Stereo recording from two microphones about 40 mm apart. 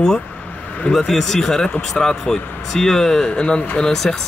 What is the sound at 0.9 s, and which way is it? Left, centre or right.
Speech, centre.